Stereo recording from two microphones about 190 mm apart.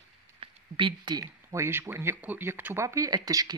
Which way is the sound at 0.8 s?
25° right (ahead or behind).